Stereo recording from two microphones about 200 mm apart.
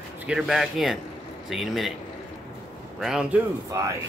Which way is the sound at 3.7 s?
15° right (ahead or behind).